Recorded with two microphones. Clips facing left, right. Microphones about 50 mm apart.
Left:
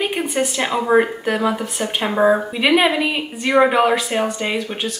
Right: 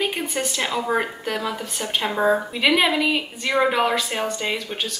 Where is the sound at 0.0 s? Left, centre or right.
Centre.